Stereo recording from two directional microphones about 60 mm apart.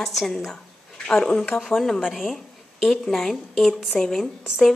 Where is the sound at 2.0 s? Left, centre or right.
Centre.